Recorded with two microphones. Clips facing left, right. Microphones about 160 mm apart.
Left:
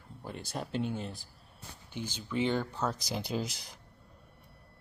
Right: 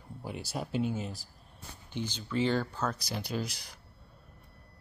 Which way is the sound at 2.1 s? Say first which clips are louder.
Right 1 dB; 10° left (ahead or behind).